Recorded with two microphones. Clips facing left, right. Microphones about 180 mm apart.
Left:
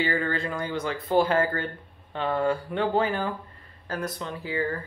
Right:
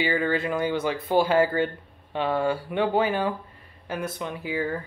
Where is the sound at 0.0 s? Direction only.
10° right (ahead or behind).